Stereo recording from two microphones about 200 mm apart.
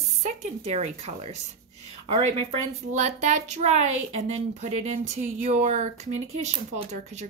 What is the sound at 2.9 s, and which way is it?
A woman's voice, 35° right (ahead or behind).